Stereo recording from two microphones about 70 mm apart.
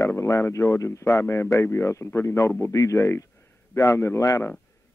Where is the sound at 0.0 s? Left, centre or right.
Left.